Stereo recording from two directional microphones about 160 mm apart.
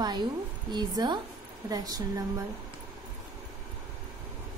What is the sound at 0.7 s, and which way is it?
A woman's voice, 25° right (ahead or behind).